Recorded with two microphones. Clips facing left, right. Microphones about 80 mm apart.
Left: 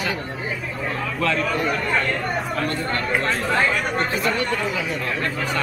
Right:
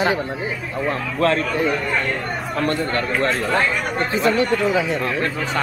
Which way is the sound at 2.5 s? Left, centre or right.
Right.